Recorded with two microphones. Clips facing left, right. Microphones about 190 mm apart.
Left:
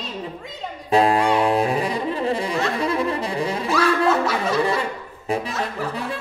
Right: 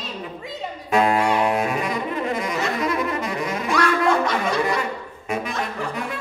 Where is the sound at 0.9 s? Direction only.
35° left (ahead or behind).